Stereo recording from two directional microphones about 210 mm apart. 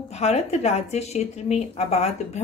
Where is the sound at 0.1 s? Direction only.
30° left (ahead or behind).